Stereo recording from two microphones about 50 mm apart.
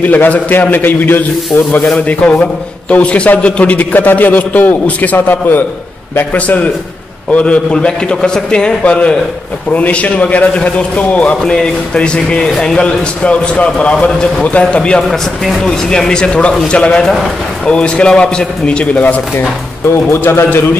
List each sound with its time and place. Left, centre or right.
0.0 s a man's voice: left
2.0 s a man's voice: left
6.3 s a man's voice: left
11.5 s a man's voice: centre
20.1 s a man's voice: left